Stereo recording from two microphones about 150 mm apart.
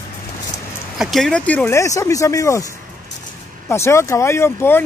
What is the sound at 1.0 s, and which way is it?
Speech, centre (ahead or behind).